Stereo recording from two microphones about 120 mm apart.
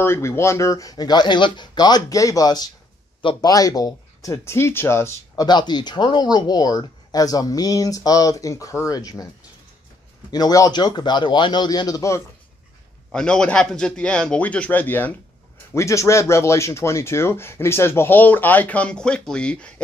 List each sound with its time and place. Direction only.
0.0 s speech: 20° left (ahead or behind)
10.3 s speech: 30° left (ahead or behind)
13.1 s a man's voice: 5° left (ahead or behind)